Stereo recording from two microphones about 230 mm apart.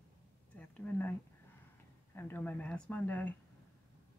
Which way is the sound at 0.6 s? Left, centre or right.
Centre.